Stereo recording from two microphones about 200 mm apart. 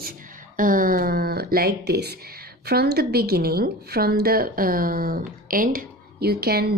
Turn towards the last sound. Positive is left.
turn(degrees=-50)  # may be behind; listen again after turning